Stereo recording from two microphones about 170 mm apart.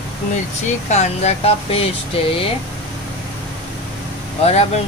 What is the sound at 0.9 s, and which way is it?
Speech, 40° left (ahead or behind).